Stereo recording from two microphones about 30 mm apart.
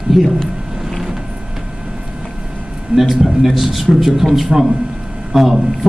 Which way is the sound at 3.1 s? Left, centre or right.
Centre.